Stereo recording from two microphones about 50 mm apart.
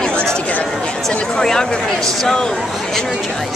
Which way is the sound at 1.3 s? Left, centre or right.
Centre.